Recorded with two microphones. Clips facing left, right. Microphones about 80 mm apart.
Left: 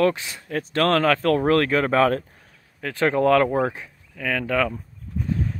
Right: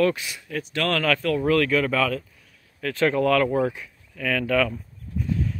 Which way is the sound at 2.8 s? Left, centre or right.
Left.